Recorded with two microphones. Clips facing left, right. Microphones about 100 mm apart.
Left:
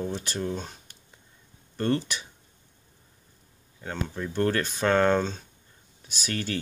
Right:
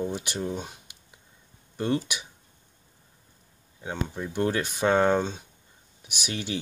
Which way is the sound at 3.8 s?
15° right (ahead or behind).